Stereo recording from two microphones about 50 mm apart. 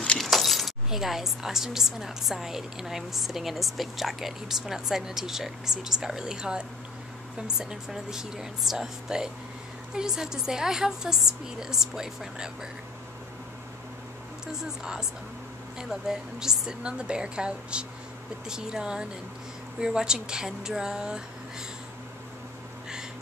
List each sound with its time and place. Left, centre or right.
0.2 s keys jangling: centre
0.8 s a woman's voice: centre
14.5 s a woman's voice: centre